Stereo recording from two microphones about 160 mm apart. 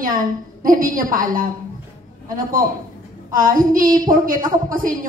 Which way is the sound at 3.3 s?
60° right (ahead or behind).